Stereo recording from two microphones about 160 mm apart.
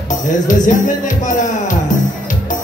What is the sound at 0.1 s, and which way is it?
Speech, 55° left (ahead or behind).